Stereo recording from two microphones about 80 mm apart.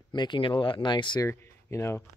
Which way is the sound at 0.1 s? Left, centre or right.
Left.